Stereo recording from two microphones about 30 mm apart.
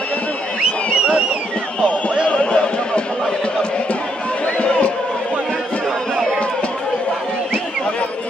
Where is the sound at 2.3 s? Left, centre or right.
Left.